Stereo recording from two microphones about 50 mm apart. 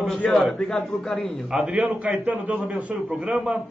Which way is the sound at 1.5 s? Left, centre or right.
Centre.